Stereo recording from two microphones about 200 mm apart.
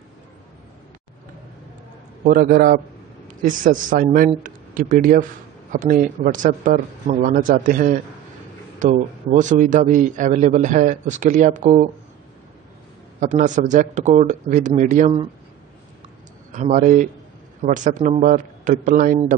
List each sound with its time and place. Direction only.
2.2 s a man's voice: 45° right (ahead or behind)
13.2 s a man's voice: 40° right (ahead or behind)
16.5 s a man's voice: 40° right (ahead or behind)